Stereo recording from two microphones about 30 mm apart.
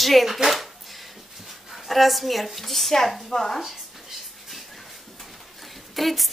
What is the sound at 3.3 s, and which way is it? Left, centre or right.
Speech, left.